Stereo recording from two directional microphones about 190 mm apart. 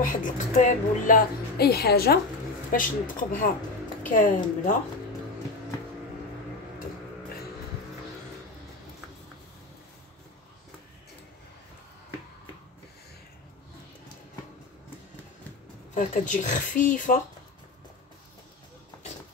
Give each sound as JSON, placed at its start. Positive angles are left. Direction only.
{"t": 0.0, "sound": "a woman's voice", "side_deg": 45}
{"t": 15.9, "sound": "a woman's voice", "side_deg": 40}